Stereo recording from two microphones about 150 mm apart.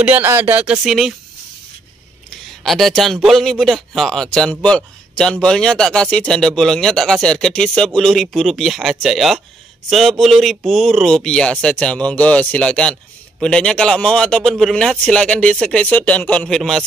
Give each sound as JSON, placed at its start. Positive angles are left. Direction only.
{"t": 0.0, "sound": "speech", "side_deg": -10}
{"t": 2.6, "sound": "a man's voice", "side_deg": 0}